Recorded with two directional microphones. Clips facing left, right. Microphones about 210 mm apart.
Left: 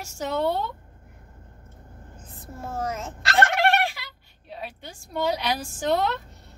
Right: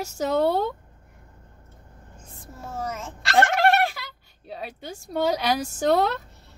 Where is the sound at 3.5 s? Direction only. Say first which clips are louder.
Right 2 dB; 40° right (ahead or behind).